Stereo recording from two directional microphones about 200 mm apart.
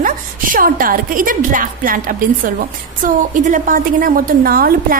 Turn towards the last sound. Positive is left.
turn(degrees=-45)  # may be behind; listen again after turning